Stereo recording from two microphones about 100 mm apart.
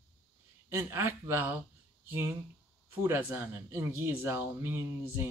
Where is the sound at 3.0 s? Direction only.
25° right (ahead or behind).